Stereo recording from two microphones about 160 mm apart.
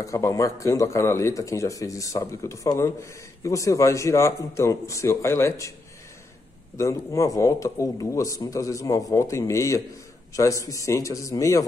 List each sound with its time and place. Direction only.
0.0 s a man's voice: 20° left (ahead or behind)
6.8 s a man's voice: 20° left (ahead or behind)